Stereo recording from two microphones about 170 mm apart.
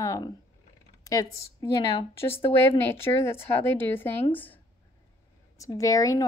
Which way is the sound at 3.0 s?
15° left (ahead or behind).